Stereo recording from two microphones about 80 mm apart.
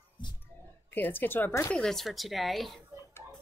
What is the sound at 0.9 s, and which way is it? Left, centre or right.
Speech, left.